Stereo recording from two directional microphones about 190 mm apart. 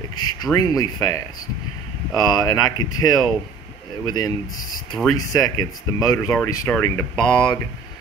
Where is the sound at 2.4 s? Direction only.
20° left (ahead or behind).